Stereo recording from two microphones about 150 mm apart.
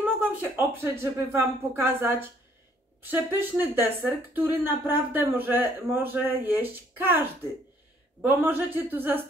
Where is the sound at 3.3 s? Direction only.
15° right (ahead or behind).